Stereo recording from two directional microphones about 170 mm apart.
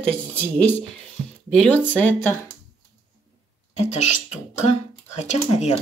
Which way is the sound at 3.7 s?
40° left (ahead or behind).